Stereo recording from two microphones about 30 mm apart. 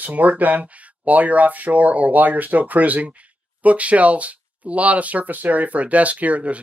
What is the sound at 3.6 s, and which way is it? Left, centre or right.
Speech, right.